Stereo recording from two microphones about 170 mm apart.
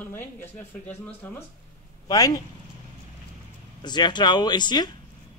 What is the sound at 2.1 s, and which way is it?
Speech, 20° left (ahead or behind).